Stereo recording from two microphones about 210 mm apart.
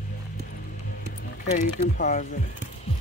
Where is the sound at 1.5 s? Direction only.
35° left (ahead or behind).